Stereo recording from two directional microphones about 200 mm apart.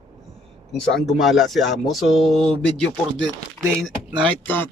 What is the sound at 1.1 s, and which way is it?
Speech, centre (ahead or behind).